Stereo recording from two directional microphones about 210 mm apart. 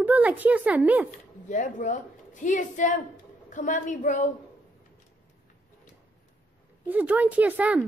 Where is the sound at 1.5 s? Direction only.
35° left (ahead or behind).